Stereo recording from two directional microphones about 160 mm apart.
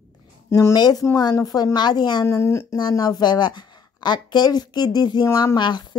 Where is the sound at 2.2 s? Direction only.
15° left (ahead or behind).